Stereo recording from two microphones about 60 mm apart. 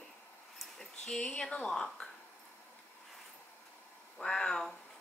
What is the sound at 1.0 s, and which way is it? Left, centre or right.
Speech, centre.